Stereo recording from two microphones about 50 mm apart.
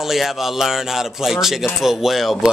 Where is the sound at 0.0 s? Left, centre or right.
Centre.